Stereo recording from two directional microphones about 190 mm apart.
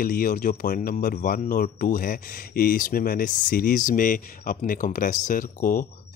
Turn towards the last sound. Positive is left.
turn(degrees=45)  # may be behind; listen again after turning